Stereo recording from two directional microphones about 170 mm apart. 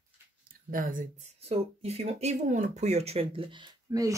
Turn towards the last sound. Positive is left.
turn(degrees=-20)  # may be behind; listen again after turning